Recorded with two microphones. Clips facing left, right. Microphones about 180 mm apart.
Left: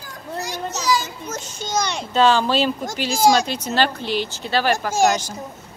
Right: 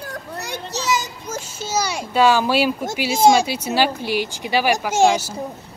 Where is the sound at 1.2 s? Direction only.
10° right (ahead or behind).